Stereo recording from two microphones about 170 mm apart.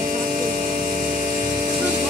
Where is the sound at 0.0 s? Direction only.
55° right (ahead or behind).